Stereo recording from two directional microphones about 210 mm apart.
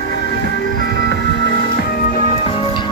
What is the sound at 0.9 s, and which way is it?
Music, 55° left (ahead or behind).